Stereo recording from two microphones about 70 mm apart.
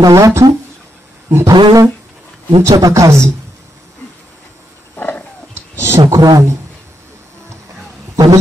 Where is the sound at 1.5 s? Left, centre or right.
Right.